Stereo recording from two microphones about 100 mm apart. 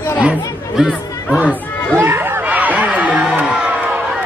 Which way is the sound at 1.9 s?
25° right (ahead or behind).